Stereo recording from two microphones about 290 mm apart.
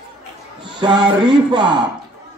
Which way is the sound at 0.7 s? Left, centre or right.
Centre.